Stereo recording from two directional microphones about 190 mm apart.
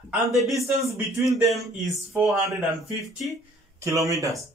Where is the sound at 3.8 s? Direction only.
15° right (ahead or behind).